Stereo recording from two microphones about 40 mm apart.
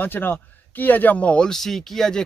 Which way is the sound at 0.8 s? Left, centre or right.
Left.